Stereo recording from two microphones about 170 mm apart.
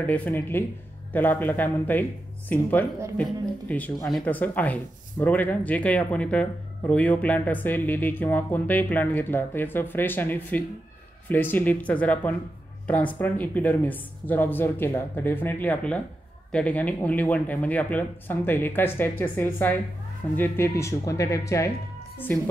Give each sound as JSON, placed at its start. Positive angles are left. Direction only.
{"t": 0.0, "sound": "speech", "side_deg": 10}